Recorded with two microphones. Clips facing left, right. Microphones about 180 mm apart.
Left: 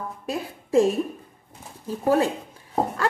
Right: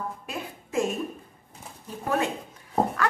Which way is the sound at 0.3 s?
35° left (ahead or behind).